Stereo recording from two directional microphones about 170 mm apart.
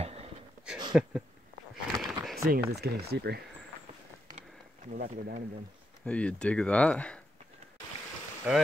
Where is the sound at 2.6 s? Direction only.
70° right (ahead or behind).